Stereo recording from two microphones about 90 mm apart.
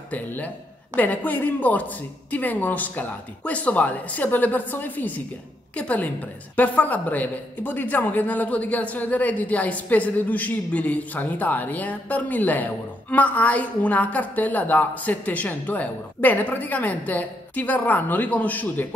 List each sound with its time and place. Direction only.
0.1 s a woman's voice: 20° left (ahead or behind)